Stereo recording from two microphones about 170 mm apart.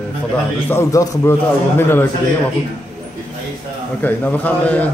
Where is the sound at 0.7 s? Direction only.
15° left (ahead or behind).